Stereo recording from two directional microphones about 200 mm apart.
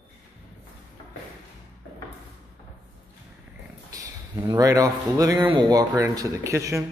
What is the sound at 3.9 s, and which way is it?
Speech, 15° right (ahead or behind).